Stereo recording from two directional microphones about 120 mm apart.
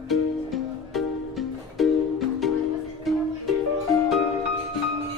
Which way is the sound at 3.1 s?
Centre (ahead or behind).